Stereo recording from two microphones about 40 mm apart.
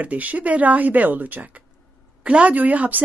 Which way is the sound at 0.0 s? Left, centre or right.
Right.